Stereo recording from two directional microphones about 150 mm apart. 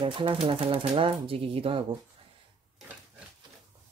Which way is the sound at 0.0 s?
35° right (ahead or behind).